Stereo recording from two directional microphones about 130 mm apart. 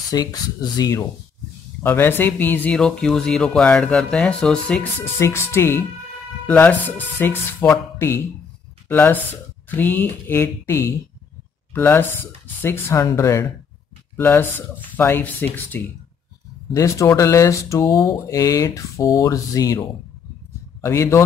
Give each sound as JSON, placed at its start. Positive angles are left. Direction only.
{"t": 0.1, "sound": "speech", "side_deg": 30}
{"t": 1.8, "sound": "speech", "side_deg": 15}
{"t": 5.2, "sound": "speech", "side_deg": 20}
{"t": 8.8, "sound": "speech", "side_deg": 15}
{"t": 16.7, "sound": "speech", "side_deg": 25}